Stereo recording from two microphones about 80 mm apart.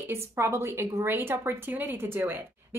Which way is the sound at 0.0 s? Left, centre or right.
Right.